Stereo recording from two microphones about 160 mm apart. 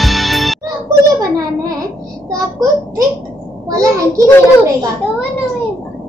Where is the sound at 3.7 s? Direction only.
20° right (ahead or behind).